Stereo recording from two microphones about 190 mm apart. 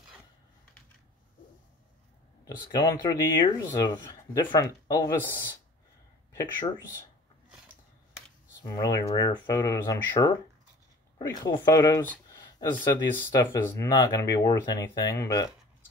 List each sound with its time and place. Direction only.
2.4 s speech: 20° left (ahead or behind)
8.6 s speech: 20° left (ahead or behind)
12.3 s a sound: 20° left (ahead or behind)
13.1 s speech: 15° left (ahead or behind)